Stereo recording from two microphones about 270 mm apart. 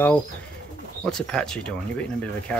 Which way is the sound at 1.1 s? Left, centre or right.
Centre.